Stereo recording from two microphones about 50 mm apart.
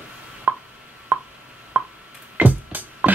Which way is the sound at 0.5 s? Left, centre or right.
Right.